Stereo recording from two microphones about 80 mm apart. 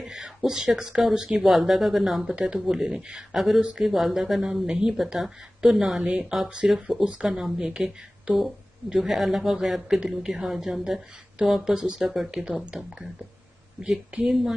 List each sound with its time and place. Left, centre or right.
0.0 s speech: centre